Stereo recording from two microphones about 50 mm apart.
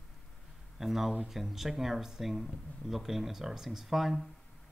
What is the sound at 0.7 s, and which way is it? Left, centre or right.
Speech, centre.